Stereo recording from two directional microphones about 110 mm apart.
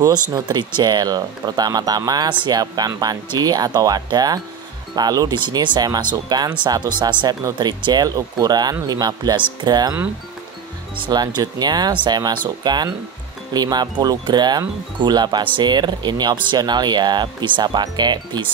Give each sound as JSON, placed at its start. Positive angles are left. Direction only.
{"t": 0.0, "sound": "speech", "side_deg": -40}
{"t": 11.0, "sound": "speech", "side_deg": -40}